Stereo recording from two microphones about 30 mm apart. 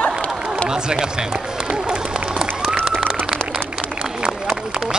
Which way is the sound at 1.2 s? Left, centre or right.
Right.